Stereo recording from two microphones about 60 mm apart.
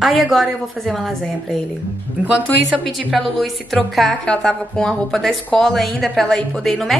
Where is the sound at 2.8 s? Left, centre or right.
Centre.